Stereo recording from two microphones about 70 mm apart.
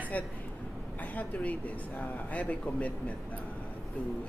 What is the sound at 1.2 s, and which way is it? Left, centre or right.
A woman's voice, left.